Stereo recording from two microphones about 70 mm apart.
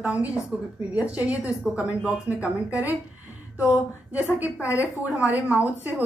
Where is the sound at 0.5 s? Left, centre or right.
Centre.